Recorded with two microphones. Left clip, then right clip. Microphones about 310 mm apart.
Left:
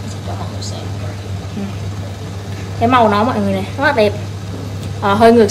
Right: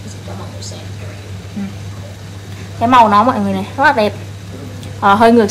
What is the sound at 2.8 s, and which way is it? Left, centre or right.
A woman's voice, centre.